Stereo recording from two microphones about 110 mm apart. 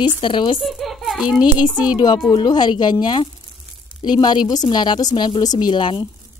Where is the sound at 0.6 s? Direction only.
Centre (ahead or behind).